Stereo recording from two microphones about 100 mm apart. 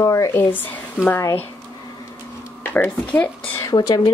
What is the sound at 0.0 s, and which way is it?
Speech, 35° left (ahead or behind).